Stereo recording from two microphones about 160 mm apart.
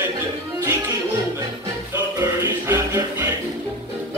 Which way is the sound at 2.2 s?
15° right (ahead or behind).